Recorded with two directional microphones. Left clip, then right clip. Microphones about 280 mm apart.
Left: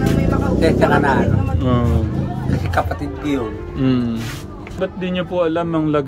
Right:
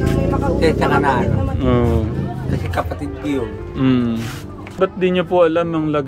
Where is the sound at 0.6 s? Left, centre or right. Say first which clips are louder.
Left 2 dB; centre.